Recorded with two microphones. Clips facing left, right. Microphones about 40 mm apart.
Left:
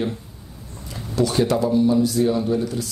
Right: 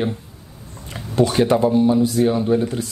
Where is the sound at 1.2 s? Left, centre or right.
Right.